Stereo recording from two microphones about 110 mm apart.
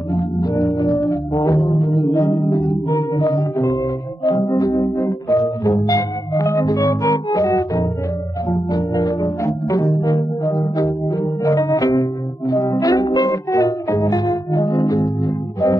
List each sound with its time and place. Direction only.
0.1 s organ: 35° left (ahead or behind)
1.0 s music: 30° left (ahead or behind)
10.4 s organ: 30° left (ahead or behind)